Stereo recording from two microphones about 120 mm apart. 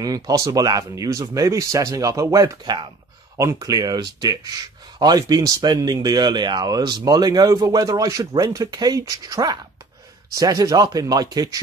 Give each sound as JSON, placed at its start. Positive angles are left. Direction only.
{"t": 0.0, "sound": "speech", "side_deg": -30}
{"t": 2.6, "sound": "speech", "side_deg": -40}